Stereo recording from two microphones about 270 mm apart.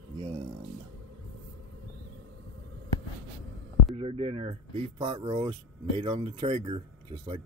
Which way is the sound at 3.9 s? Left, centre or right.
Right.